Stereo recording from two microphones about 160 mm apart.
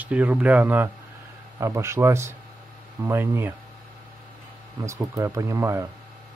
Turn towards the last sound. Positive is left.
turn(degrees=-20)  # may be behind; listen again after turning